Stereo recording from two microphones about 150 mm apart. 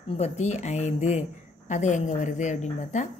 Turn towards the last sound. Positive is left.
turn(degrees=55)  # may be behind; listen again after turning